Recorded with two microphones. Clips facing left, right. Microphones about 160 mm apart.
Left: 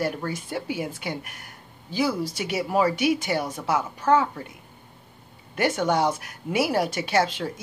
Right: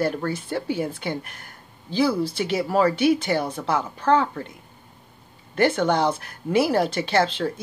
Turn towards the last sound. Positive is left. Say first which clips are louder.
# right 2 dB
turn(degrees=10)  # may be behind; listen again after turning